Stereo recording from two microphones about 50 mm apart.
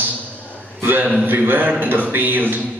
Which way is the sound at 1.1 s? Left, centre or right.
Right.